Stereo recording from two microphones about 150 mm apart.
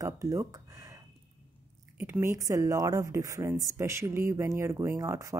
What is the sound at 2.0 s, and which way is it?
A woman's voice, 15° right (ahead or behind).